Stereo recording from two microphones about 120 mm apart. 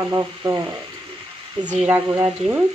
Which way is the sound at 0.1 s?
20° right (ahead or behind).